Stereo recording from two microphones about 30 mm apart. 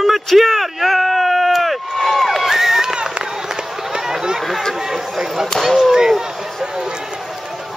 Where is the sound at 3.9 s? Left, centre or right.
Right.